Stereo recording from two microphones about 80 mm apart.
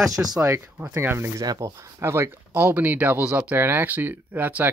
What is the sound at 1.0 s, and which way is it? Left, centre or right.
Speech, right.